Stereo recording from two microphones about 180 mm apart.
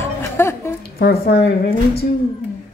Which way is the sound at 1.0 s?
60° left (ahead or behind).